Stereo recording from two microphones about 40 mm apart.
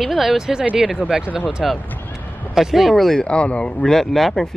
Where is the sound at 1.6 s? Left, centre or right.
Centre.